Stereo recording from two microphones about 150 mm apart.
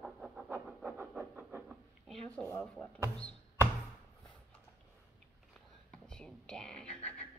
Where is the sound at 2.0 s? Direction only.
5° left (ahead or behind).